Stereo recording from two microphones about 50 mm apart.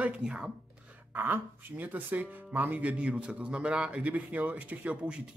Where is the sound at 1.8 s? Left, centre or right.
Right.